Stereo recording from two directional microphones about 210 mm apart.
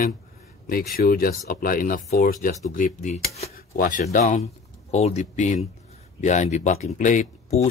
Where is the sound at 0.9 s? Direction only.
45° left (ahead or behind).